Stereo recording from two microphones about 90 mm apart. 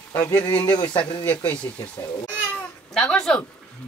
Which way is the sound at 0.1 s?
20° left (ahead or behind).